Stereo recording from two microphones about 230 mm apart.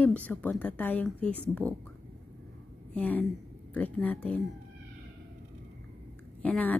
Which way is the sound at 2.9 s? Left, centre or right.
Centre.